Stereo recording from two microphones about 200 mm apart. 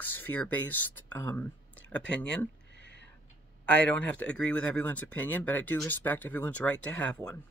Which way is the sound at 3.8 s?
5° left (ahead or behind).